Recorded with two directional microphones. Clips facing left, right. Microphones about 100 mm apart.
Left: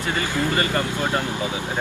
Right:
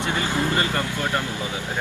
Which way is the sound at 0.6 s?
20° left (ahead or behind).